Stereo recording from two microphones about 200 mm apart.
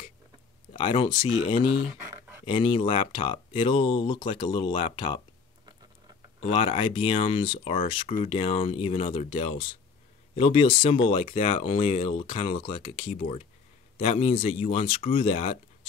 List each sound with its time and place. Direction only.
0.7 s speech: 25° left (ahead or behind)
2.0 s a sound: 10° right (ahead or behind)
2.4 s speech: 25° left (ahead or behind)
6.5 s speech: 25° left (ahead or behind)
8.1 s speech: 40° left (ahead or behind)
8.4 s speech: 30° left (ahead or behind)